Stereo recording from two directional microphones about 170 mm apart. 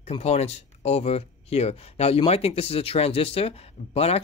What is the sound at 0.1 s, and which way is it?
Speech, 40° left (ahead or behind).